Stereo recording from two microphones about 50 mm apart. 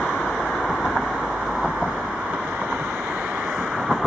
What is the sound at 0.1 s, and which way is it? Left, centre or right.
Vehicle, left.